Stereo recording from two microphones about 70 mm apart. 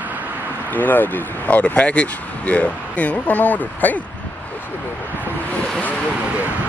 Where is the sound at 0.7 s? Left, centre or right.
Left.